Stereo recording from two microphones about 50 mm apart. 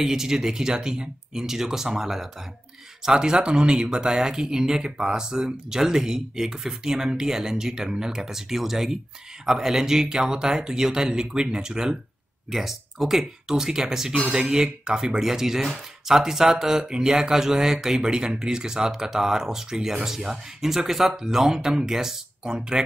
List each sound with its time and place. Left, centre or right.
0.0 s speech: centre